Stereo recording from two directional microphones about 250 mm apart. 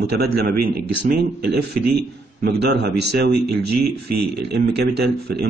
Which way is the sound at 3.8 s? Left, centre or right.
Right.